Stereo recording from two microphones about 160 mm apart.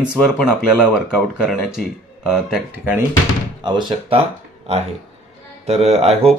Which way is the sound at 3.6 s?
30° right (ahead or behind).